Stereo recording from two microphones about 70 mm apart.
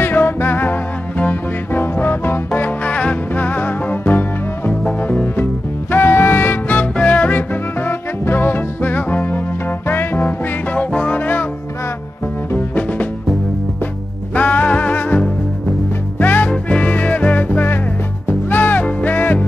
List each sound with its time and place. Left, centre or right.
0.0 s music: left
12.5 s music: left
14.3 s music: left